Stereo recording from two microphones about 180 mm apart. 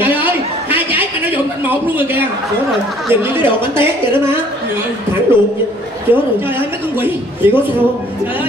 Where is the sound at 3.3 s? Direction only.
30° left (ahead or behind).